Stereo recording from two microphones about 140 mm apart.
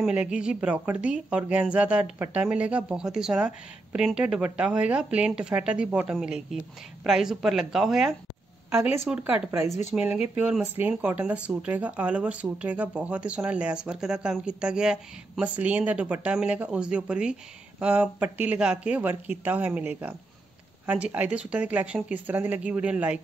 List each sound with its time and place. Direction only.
0.0 s speech: 5° right (ahead or behind)
8.6 s speech: 15° right (ahead or behind)